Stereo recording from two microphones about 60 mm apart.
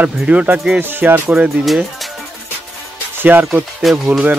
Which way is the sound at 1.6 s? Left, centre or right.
Centre.